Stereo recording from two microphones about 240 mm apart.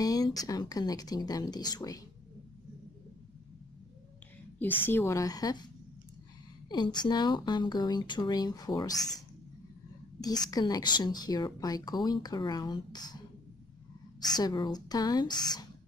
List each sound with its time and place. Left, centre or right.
0.0 s a woman's voice: centre
4.6 s a woman's voice: centre
6.7 s a woman's voice: centre
10.2 s a woman's voice: centre
14.3 s a woman's voice: centre